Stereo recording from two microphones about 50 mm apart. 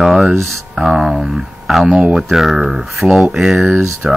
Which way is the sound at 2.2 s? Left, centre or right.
Centre.